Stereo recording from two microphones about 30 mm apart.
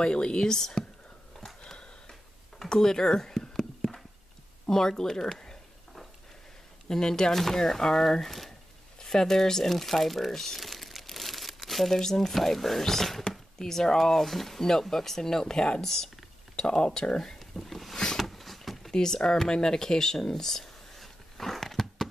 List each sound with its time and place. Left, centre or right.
0.0 s speech: left
1.6 s sniff: left
2.7 s speech: centre
3.8 s clip-clop: centre
4.6 s speech: centre
6.9 s speech: centre
9.7 s speech: centre
10.6 s crumpling: centre
12.0 s speech: centre
17.4 s speech: centre
18.1 s a sound: centre
18.9 s speech: centre
20.2 s a sound: centre